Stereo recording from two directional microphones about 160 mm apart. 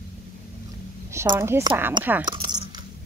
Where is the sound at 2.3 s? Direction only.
25° right (ahead or behind).